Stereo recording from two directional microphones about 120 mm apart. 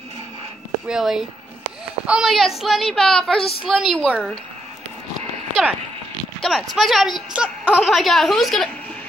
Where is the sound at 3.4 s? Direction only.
50° left (ahead or behind).